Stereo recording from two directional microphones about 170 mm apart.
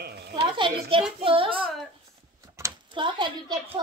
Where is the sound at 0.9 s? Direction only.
30° right (ahead or behind).